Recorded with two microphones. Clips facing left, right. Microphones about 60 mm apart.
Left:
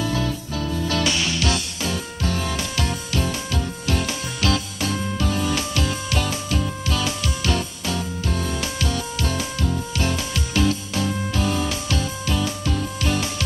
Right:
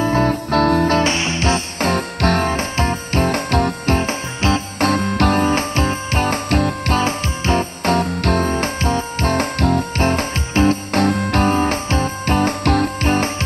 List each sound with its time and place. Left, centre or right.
0.0 s music: right
0.8 s music: right
1.8 s music: right
2.5 s music: right
3.9 s music: right
4.7 s music: right
5.4 s music: right
7.0 s music: right
7.9 s music: right
8.5 s music: right
9.9 s music: right
11.0 s music: right
11.5 s music: right
13.0 s music: right